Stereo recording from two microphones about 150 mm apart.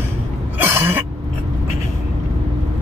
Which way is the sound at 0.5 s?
15° right (ahead or behind).